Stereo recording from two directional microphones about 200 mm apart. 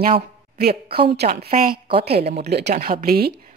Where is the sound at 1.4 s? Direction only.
45° right (ahead or behind).